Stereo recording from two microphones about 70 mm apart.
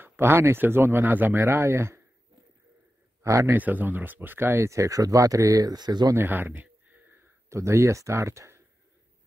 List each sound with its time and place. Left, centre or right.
0.0 s speech: right
3.2 s a man's voice: right
3.5 s speech: right
4.6 s speech: right
6.1 s speech: right
7.4 s speech: right